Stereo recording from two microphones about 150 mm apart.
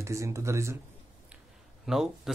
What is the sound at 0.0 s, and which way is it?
Speech, 20° right (ahead or behind).